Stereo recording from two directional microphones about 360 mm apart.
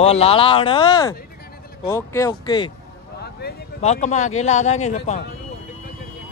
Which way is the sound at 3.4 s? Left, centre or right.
Centre.